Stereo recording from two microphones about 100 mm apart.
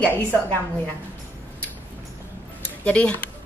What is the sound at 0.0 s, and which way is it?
Speech, 20° left (ahead or behind).